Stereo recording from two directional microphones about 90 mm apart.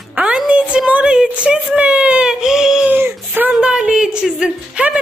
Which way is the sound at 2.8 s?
25° right (ahead or behind).